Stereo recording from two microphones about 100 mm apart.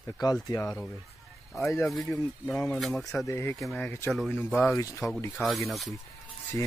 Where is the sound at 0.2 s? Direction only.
40° left (ahead or behind).